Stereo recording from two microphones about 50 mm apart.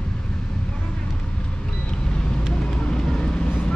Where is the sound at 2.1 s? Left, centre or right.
Centre.